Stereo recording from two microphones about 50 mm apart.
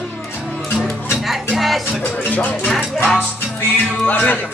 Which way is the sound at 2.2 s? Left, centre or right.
Left.